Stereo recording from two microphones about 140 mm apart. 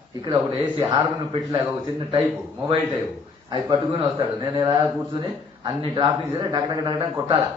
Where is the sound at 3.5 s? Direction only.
35° right (ahead or behind).